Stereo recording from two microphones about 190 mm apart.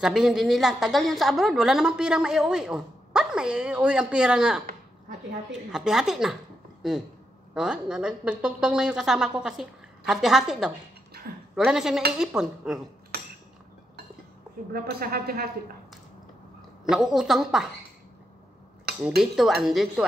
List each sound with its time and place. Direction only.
0.0 s a woman's voice: centre (ahead or behind)
13.1 s cutlery: 55° right (ahead or behind)
14.7 s a woman's voice: 50° right (ahead or behind)
16.9 s a woman's voice: centre (ahead or behind)
19.0 s a woman's voice: centre (ahead or behind)